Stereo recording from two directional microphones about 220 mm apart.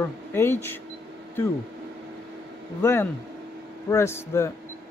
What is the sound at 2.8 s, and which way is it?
Speech, 10° left (ahead or behind).